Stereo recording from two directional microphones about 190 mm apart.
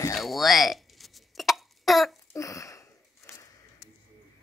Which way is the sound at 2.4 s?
15° left (ahead or behind).